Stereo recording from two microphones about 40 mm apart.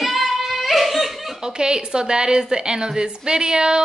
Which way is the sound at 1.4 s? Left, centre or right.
Centre.